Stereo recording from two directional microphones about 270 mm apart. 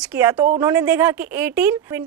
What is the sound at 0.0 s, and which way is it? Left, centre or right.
Speech, centre.